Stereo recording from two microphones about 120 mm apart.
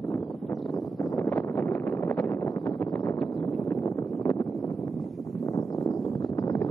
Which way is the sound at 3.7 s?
25° left (ahead or behind).